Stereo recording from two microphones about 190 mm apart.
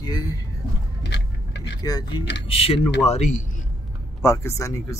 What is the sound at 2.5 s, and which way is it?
Speech, 30° left (ahead or behind).